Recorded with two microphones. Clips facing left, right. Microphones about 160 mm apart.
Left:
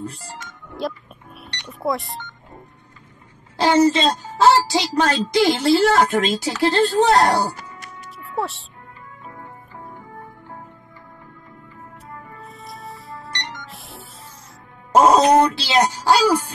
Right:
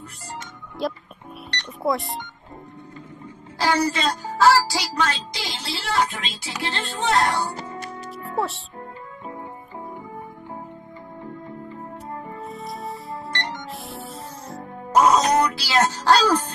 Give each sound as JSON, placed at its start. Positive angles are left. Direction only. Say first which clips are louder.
{"t": 0.0, "sound": "speech", "louder": "left 5 dB", "side_deg": 30}
{"t": 0.8, "sound": "speech", "louder": "even", "side_deg": 0}
{"t": 3.5, "sound": "speech", "louder": "left 6 dB", "side_deg": 20}
{"t": 5.0, "sound": "a woman's voice", "louder": "left 10 dB", "side_deg": 45}
{"t": 7.5, "sound": "music", "louder": "right 6 dB", "side_deg": -30}
{"t": 8.4, "sound": "speech", "louder": "even", "side_deg": 0}
{"t": 12.4, "sound": "music", "louder": "right 4 dB", "side_deg": 0}
{"t": 15.0, "sound": "speech", "louder": "left 4 dB", "side_deg": 30}